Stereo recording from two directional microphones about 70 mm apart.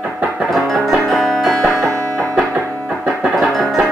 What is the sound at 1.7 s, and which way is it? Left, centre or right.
Music, right.